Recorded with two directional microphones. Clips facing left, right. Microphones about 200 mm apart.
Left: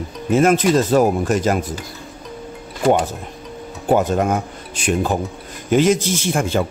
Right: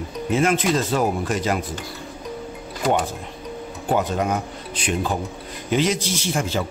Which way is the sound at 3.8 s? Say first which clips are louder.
Left 5 dB; 45° left (ahead or behind).